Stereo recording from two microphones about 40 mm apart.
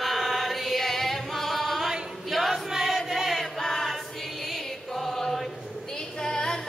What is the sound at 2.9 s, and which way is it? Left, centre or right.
Chant, centre.